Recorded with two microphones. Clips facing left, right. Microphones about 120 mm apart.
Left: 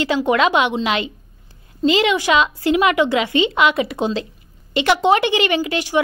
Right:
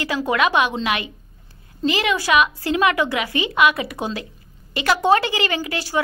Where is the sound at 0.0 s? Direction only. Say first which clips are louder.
Left 4 dB; 25° left (ahead or behind).